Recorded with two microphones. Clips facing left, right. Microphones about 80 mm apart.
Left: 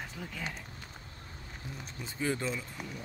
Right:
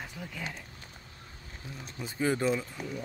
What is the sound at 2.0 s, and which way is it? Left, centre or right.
Speech, centre.